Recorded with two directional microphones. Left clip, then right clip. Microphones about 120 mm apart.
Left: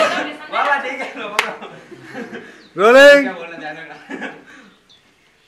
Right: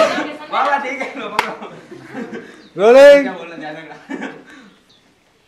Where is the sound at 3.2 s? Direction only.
Centre (ahead or behind).